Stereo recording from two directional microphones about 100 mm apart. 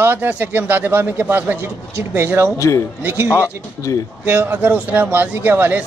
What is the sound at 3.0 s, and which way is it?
Speech, 20° right (ahead or behind).